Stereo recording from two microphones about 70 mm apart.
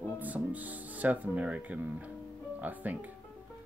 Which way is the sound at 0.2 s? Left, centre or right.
Right.